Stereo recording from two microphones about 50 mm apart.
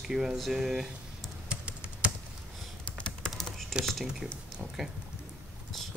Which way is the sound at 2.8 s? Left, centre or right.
Left.